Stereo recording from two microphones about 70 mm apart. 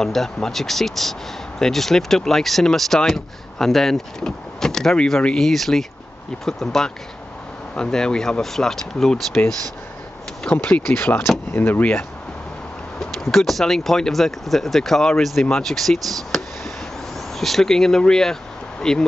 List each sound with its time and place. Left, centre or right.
0.0 s speech: centre
10.5 s speech: left
13.0 s speech: centre
17.4 s speech: centre